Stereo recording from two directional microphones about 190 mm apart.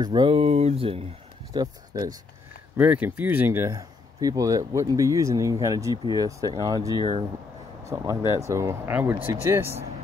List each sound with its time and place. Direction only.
0.0 s speech: 25° right (ahead or behind)
1.5 s speech: 20° right (ahead or behind)
2.8 s speech: 10° right (ahead or behind)